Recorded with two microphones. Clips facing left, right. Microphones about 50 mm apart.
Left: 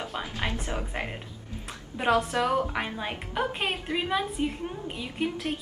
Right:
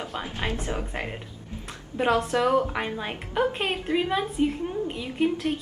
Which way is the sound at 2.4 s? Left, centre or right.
Right.